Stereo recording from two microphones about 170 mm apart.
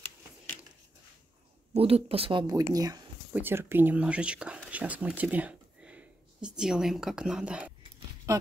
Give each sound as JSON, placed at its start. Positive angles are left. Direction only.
{"t": 1.7, "sound": "speech", "side_deg": -35}